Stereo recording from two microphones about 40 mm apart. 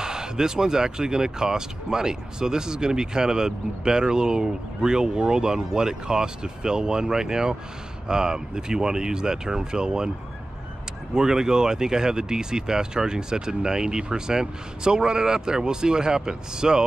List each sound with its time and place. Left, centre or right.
0.0 s speech: centre
11.1 s speech: centre